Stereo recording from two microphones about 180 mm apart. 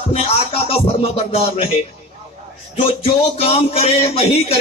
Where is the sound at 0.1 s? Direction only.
35° left (ahead or behind).